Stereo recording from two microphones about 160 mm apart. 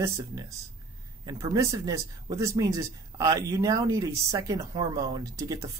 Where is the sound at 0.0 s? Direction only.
20° right (ahead or behind).